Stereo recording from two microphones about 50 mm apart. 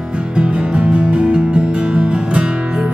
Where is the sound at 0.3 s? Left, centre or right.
Right.